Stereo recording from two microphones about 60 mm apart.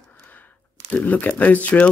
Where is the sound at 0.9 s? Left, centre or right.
Left.